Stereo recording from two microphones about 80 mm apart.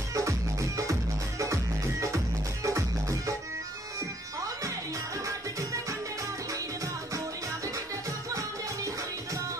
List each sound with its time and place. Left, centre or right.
0.1 s music: right
5.2 s music: right
8.3 s music: right